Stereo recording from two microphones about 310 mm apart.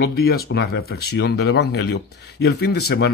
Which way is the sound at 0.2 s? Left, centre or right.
Left.